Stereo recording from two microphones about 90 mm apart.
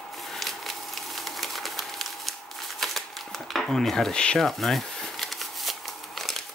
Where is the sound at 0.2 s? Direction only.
Centre (ahead or behind).